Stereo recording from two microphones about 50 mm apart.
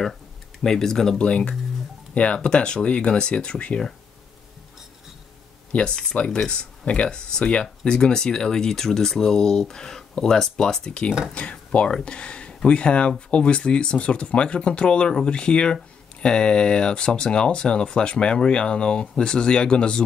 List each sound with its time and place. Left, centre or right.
0.6 s speech: centre
1.2 s speech: left
5.7 s speech: left
11.3 s speech: left